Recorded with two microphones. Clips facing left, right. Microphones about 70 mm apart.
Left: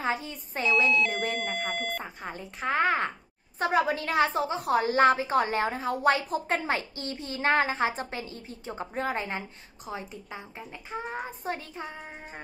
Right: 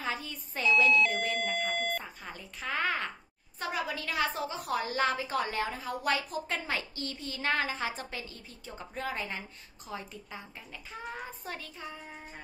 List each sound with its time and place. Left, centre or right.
0.0 s speech: left
0.7 s speech: centre
2.2 s a woman's voice: left